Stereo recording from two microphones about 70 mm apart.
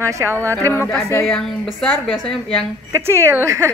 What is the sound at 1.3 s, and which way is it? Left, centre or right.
A woman's voice, centre.